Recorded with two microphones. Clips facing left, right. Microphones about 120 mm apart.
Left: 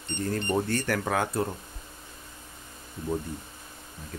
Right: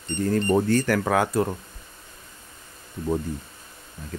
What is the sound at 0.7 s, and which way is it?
Speech, 90° right.